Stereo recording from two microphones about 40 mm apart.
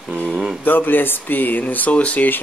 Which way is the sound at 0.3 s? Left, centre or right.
Centre.